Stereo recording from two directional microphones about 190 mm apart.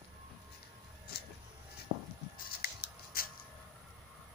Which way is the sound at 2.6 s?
50° left (ahead or behind).